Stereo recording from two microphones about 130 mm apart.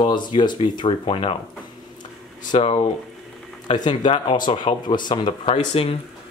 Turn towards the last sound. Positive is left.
turn(degrees=50)  # may be behind; listen again after turning